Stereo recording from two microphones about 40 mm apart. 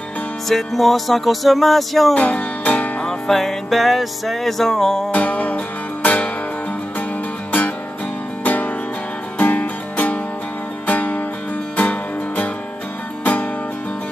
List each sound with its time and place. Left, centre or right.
0.5 s music: centre
2.1 s music: left
3.1 s music: centre
5.1 s music: left
8.5 s music: left